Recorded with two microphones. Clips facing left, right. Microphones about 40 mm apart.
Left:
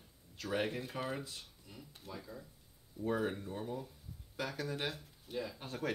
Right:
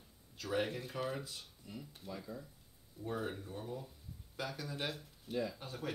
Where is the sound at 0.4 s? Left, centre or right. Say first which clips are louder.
Even; centre.